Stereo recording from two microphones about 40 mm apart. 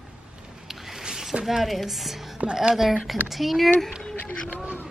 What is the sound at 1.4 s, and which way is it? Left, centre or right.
A woman's voice, centre.